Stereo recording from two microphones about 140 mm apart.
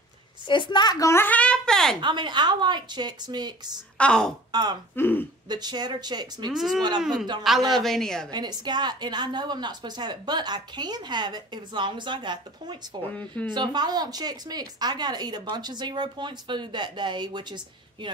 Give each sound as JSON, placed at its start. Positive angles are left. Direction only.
{"t": 0.5, "sound": "a child's voice", "side_deg": 35}
{"t": 2.0, "sound": "a woman's voice", "side_deg": -35}
{"t": 4.0, "sound": "a woman's voice", "side_deg": 5}
{"t": 4.5, "sound": "speech", "side_deg": -30}
{"t": 4.9, "sound": "speech", "side_deg": 15}
{"t": 5.5, "sound": "a woman's voice", "side_deg": -30}
{"t": 6.5, "sound": "a woman's voice", "side_deg": 0}
{"t": 8.3, "sound": "a woman's voice", "side_deg": -30}
{"t": 13.1, "sound": "a child's voice", "side_deg": 10}
{"t": 13.5, "sound": "a woman's voice", "side_deg": -30}